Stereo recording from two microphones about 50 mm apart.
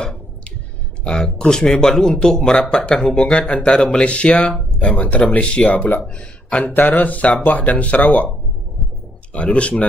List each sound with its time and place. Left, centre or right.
1.0 s a man's voice: centre
9.3 s speech: left